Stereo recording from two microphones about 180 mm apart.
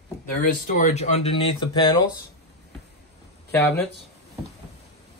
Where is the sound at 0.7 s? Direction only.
40° left (ahead or behind); by 2.0 s 25° left (ahead or behind).